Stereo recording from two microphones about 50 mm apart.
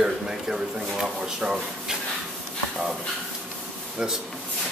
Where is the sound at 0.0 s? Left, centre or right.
Centre.